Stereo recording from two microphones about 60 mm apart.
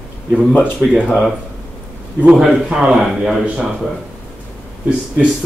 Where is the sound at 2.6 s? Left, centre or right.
Centre.